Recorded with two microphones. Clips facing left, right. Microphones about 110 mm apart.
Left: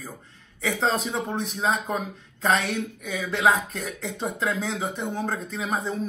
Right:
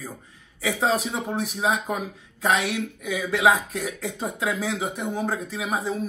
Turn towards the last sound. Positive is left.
turn(degrees=-5)  # may be behind; listen again after turning